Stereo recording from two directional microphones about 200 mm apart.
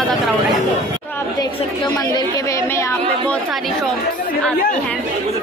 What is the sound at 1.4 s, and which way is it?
A woman's voice, 20° left (ahead or behind).